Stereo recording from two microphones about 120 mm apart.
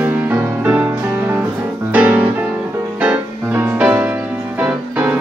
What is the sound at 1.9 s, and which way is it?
Music, 15° right (ahead or behind).